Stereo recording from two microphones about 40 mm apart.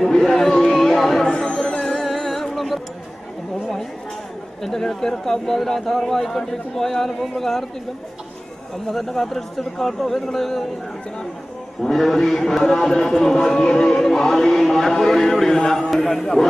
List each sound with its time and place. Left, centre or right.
0.0 s chatter: centre
1.3 s music: left; by 2.8 s centre
4.6 s speech: centre
8.9 s speech: centre
11.8 s speech: centre
14.0 s speech: centre